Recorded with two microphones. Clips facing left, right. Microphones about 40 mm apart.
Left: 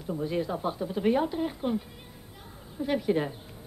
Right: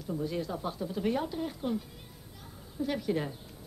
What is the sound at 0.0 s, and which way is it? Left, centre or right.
A woman's voice, left.